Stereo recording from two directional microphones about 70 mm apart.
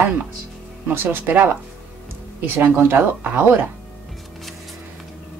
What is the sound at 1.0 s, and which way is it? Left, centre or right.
Speech, right.